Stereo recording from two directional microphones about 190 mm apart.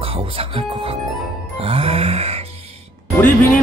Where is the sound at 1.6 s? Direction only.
30° right (ahead or behind).